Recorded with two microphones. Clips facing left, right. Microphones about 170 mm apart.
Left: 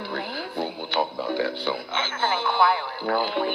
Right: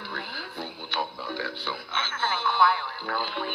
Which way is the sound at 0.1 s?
20° left (ahead or behind).